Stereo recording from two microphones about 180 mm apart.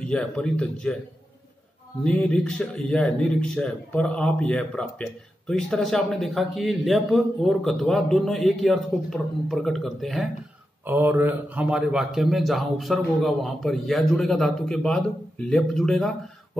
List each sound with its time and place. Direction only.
0.0 s speech: 5° left (ahead or behind)
2.0 s speech: 5° left (ahead or behind)
10.9 s speech: 10° right (ahead or behind)